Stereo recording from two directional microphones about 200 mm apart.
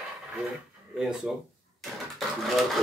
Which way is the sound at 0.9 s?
Centre (ahead or behind).